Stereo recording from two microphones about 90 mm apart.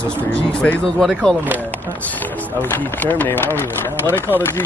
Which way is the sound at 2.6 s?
20° left (ahead or behind).